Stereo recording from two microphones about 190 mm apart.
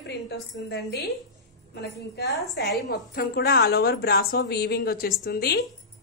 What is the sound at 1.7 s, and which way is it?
A woman's voice, 60° left (ahead or behind).